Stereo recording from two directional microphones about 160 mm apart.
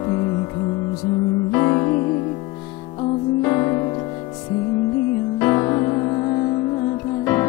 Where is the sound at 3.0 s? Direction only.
25° left (ahead or behind).